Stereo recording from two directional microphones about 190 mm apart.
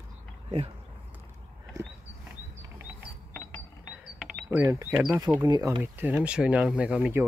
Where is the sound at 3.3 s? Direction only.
10° left (ahead or behind).